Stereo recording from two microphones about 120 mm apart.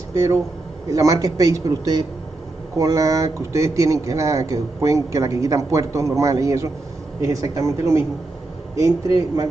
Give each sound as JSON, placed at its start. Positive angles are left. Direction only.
{"t": 0.1, "sound": "speech", "side_deg": -25}